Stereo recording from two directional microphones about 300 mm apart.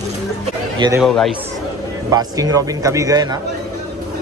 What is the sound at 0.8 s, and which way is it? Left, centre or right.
Speech, centre.